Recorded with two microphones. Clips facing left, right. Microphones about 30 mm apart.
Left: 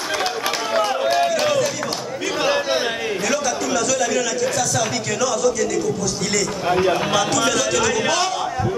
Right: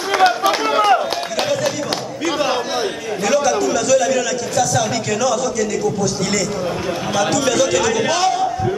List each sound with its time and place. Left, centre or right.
0.2 s a sound: right
3.3 s a man's voice: centre
7.2 s a man's voice: centre